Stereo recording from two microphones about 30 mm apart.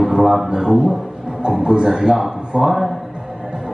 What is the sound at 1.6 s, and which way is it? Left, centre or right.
Speech, right.